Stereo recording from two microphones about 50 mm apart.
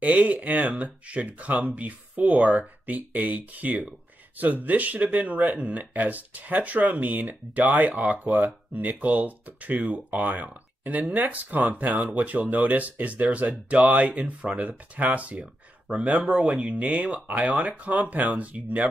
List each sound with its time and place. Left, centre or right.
0.0 s speech: right; by 16.5 s centre
16.5 s speech: right